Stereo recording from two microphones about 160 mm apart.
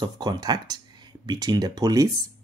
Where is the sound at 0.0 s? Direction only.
25° right (ahead or behind).